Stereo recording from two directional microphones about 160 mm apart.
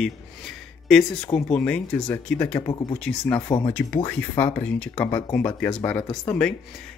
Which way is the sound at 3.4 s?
30° left (ahead or behind).